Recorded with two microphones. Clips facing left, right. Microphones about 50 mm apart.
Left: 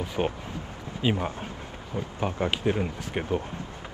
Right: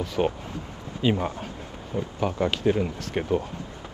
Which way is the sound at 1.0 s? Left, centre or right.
Centre.